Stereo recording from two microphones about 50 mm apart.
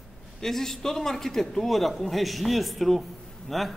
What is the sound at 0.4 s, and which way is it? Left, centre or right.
A man's voice, centre.